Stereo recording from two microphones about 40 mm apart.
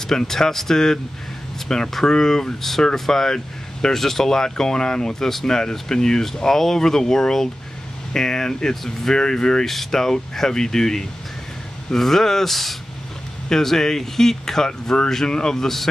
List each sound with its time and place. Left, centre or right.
0.0 s speech: centre